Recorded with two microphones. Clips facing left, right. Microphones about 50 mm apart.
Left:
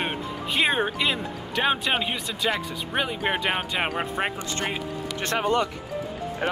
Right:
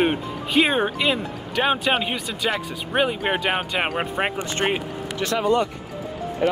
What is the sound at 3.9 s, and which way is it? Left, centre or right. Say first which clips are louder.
Speech: right 3 dB; right.